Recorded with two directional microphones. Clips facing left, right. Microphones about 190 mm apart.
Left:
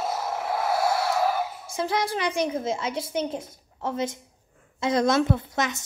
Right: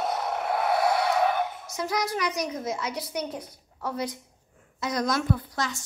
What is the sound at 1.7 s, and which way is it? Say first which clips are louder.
A woman's voice: left 2 dB; 30° left (ahead or behind).